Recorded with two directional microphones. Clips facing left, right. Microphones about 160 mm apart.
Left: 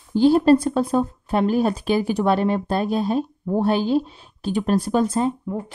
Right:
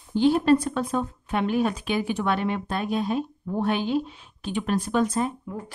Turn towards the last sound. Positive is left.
turn(degrees=30)  # may be behind; listen again after turning